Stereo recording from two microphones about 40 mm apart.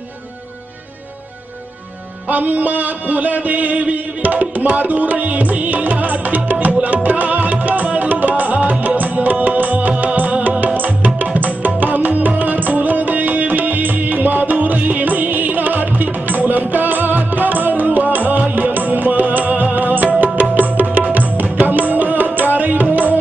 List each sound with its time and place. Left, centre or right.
2.2 s music: right